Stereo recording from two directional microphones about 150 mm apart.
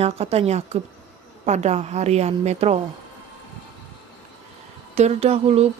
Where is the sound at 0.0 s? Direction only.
45° right (ahead or behind).